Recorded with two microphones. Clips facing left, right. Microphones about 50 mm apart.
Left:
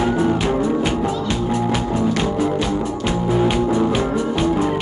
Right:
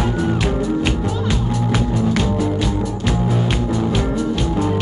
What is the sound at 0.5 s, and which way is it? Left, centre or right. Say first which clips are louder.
Music: left 1 dB; centre.